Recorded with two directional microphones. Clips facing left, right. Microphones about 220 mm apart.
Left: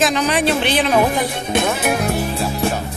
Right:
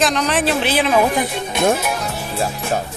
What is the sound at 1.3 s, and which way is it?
Music, 50° left (ahead or behind).